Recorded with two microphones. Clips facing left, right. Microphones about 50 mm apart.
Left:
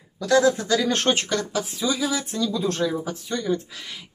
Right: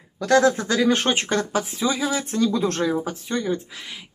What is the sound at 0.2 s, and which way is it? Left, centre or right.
Speech, right.